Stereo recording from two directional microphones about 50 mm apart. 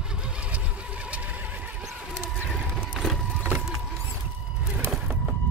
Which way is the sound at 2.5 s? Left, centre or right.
Centre.